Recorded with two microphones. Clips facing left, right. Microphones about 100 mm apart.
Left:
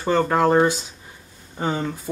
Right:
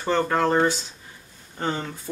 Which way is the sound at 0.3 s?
15° left (ahead or behind).